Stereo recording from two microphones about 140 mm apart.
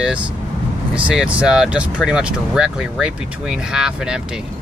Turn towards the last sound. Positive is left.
turn(degrees=-5)  # may be behind; listen again after turning